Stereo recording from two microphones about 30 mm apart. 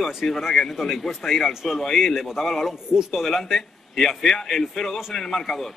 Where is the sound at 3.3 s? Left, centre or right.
Centre.